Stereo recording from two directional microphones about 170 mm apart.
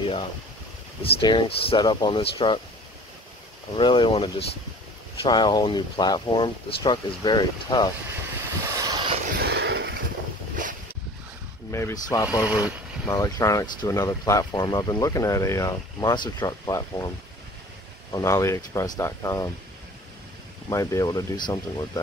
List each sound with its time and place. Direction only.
0.0 s speech: 30° left (ahead or behind)
3.7 s speech: 30° left (ahead or behind)
8.6 s vehicle: 20° right (ahead or behind)
9.3 s a sound: 70° right (ahead or behind); by 9.9 s 90° right
11.7 s speech: 20° left (ahead or behind)
12.3 s speech: 10° right (ahead or behind)
13.0 s speech: 20° left (ahead or behind)
18.1 s speech: 15° left (ahead or behind)
20.7 s speech: 20° left (ahead or behind)